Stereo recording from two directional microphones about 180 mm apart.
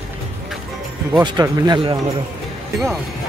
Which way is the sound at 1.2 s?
20° right (ahead or behind).